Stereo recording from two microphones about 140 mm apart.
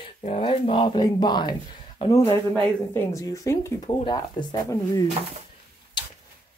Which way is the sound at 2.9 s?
20° left (ahead or behind).